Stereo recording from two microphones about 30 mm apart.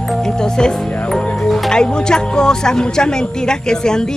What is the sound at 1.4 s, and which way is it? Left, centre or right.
Music, centre.